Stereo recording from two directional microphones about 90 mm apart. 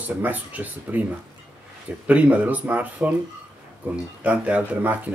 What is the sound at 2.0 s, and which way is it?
Speech, 15° right (ahead or behind).